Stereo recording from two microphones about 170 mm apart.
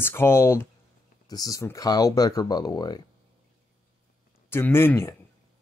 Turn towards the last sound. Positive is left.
turn(degrees=15)  # may be behind; listen again after turning